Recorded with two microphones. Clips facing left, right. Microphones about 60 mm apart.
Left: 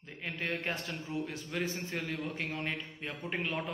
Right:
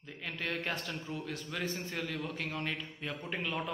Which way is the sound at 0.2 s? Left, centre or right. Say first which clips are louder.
Left 1 dB; left.